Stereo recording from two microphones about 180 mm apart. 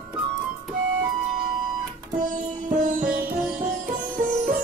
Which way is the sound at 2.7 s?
45° right (ahead or behind).